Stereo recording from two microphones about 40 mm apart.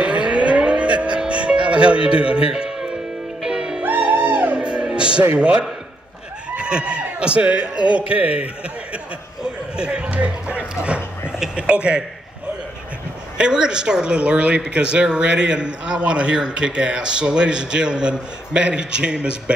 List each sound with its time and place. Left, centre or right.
0.0 s music: right
2.5 s music: centre
4.0 s music: right
5.4 s a man's voice: right
8.9 s speech: right
13.4 s speech: right